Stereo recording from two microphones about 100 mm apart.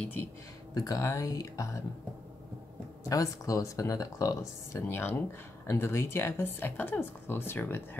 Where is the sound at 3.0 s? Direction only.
35° left (ahead or behind).